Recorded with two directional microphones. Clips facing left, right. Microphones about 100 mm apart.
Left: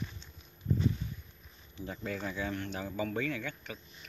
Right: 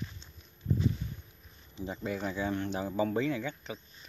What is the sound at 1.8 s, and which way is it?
Speech, 20° right (ahead or behind).